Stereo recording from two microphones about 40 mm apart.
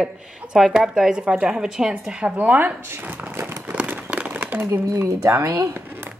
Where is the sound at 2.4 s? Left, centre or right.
Right.